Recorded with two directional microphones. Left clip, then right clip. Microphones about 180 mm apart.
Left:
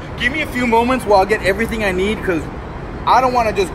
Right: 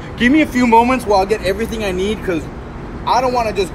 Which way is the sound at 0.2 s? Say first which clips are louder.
Right 5 dB; 45° right (ahead or behind).